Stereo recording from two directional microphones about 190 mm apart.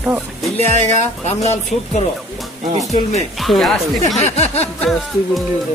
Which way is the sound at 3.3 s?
Centre (ahead or behind).